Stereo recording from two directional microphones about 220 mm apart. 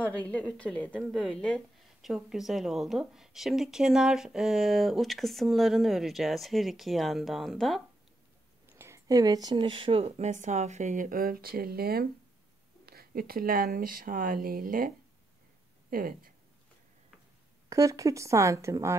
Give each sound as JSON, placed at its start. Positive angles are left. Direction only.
{"t": 0.0, "sound": "a woman's voice", "side_deg": 5}
{"t": 8.6, "sound": "speech", "side_deg": -10}
{"t": 15.9, "sound": "speech", "side_deg": -40}
{"t": 17.6, "sound": "speech", "side_deg": -15}